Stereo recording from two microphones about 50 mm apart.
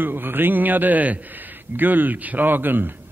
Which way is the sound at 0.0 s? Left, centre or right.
Right.